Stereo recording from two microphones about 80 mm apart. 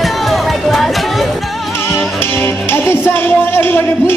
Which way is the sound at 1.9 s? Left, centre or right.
Left.